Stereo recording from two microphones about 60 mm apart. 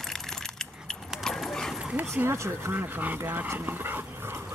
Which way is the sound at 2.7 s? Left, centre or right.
Right.